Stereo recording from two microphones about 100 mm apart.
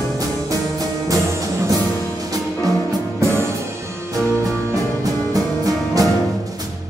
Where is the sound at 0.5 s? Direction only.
35° right (ahead or behind).